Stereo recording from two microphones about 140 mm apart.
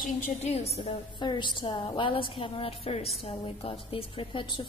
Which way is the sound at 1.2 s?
30° left (ahead or behind).